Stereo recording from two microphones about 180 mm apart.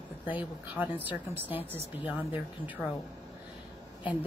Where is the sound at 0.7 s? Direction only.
10° right (ahead or behind).